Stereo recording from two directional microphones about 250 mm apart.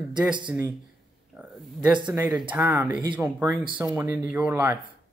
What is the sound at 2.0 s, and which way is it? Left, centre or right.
Speech, centre.